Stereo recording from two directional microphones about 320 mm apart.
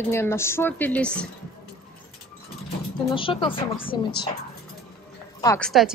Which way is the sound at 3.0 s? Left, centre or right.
Centre.